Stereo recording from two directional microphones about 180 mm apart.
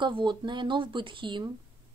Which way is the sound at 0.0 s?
25° right (ahead or behind).